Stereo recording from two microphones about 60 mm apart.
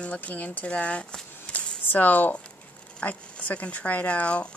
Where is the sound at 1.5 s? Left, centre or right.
Left.